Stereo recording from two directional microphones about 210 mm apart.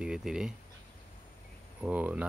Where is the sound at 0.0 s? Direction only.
5° right (ahead or behind).